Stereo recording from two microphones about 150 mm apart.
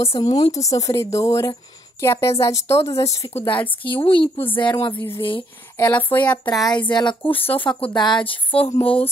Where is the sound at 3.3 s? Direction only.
45° left (ahead or behind).